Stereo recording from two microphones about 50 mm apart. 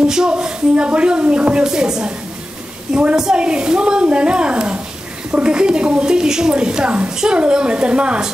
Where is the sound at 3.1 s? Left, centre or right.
Centre.